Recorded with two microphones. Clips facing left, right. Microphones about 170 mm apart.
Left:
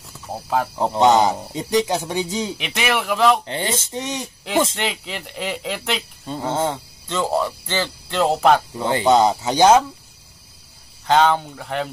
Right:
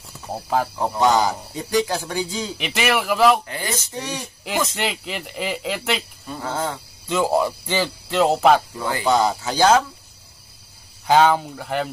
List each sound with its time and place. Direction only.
0.3 s speech: centre (ahead or behind)
0.7 s speech: 20° left (ahead or behind)
2.5 s speech: centre (ahead or behind)
3.4 s speech: 25° left (ahead or behind)
4.7 s speech: 5° right (ahead or behind)
6.2 s speech: 25° left (ahead or behind)
7.1 s speech: 10° right (ahead or behind)
8.7 s speech: 25° left (ahead or behind)
11.1 s speech: 5° right (ahead or behind)